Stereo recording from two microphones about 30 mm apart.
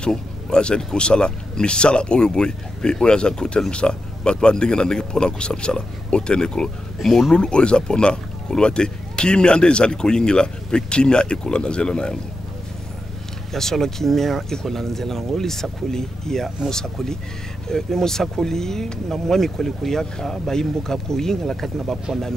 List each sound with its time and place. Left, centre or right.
0.1 s speech: left
7.0 s speech: centre
7.3 s speech: left
13.5 s speech: centre